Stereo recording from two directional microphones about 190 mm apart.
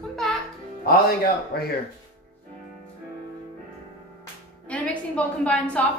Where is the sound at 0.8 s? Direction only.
55° left (ahead or behind).